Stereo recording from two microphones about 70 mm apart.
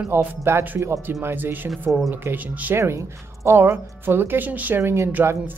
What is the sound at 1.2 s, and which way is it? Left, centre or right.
Speech, right.